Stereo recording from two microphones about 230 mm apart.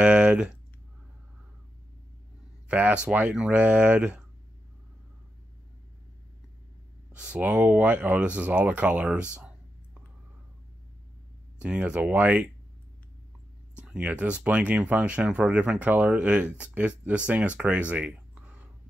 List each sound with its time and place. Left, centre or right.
0.0 s clicking: centre
2.7 s speech: centre
7.1 s speech: centre
11.6 s speech: centre
13.7 s speech: centre